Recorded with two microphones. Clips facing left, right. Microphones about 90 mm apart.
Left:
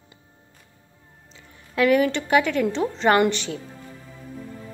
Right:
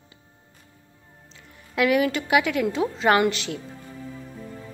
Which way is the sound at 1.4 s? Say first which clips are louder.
Left 2 dB; 5° right (ahead or behind).